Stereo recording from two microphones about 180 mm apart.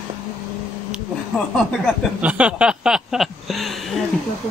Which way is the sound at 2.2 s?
5° right (ahead or behind).